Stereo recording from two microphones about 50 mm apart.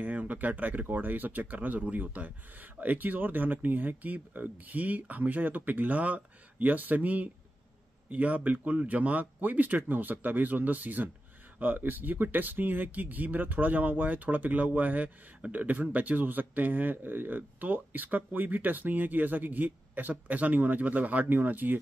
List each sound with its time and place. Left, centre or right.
0.0 s speech: right